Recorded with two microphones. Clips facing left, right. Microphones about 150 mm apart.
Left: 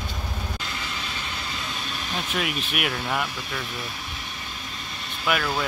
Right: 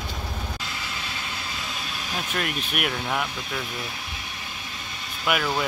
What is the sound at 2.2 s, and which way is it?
Speech, centre (ahead or behind).